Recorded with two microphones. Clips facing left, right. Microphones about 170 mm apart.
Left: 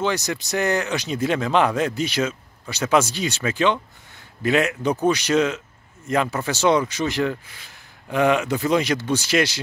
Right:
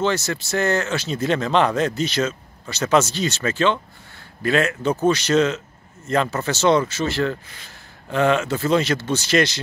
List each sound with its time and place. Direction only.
0.0 s speech: 15° left (ahead or behind)